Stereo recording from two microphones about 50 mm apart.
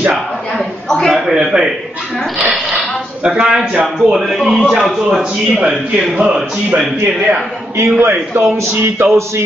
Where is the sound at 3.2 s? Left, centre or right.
Centre.